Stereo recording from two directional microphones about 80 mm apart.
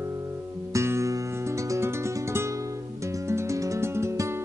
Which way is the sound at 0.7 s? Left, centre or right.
Right.